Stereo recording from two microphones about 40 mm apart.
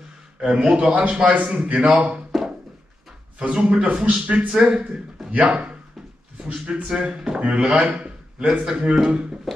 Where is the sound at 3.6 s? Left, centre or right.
Right.